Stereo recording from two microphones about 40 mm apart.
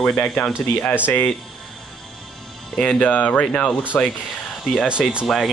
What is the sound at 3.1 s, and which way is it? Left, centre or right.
Speech, left.